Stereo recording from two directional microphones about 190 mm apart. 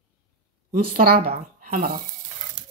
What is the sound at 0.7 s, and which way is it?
Speech, 50° right (ahead or behind).